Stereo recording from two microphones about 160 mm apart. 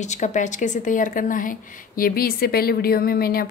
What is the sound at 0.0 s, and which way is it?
A woman's voice, 45° left (ahead or behind).